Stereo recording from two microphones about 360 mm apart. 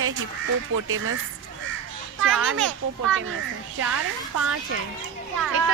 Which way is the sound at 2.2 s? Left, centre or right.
Right.